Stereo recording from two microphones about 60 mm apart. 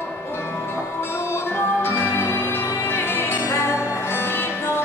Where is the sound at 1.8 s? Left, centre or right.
Left.